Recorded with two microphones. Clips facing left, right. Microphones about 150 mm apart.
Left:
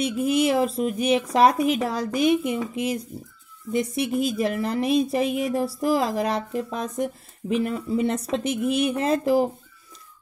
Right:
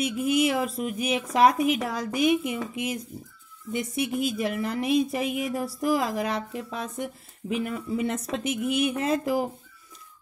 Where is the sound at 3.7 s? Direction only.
35° left (ahead or behind).